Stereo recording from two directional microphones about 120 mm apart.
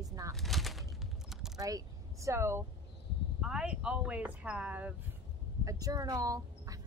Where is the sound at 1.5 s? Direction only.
30° right (ahead or behind).